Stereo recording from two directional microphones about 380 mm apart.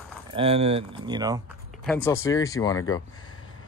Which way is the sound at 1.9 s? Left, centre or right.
Centre.